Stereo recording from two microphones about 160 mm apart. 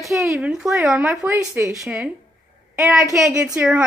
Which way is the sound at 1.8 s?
Centre (ahead or behind).